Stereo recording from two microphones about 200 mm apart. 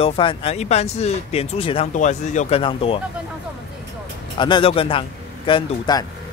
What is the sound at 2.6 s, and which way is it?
Speech, 25° left (ahead or behind).